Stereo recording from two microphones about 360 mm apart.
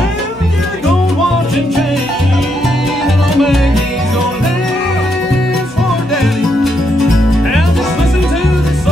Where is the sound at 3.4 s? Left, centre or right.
Centre.